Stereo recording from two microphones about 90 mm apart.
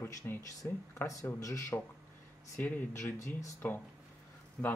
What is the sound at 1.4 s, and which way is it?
Speech, 35° left (ahead or behind).